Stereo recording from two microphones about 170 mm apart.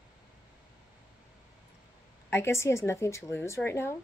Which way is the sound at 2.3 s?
15° left (ahead or behind).